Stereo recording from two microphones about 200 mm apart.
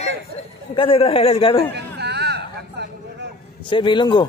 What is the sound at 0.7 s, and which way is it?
Speech, 25° left (ahead or behind).